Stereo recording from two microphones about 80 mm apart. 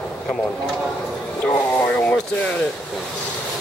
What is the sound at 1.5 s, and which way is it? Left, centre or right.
Speech, left.